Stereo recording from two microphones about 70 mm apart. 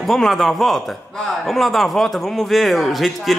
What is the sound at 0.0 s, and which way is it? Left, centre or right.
A man's voice, centre.